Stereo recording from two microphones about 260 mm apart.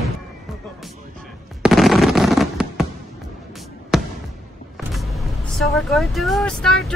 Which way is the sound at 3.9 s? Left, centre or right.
Centre.